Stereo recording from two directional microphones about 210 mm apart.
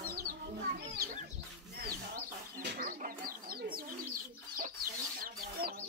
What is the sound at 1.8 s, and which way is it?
Bird, 40° right (ahead or behind).